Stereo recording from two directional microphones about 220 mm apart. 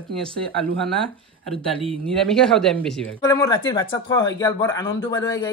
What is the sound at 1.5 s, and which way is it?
Speech, centre (ahead or behind).